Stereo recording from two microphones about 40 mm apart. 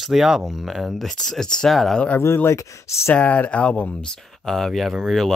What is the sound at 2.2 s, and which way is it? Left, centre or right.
Speech, left.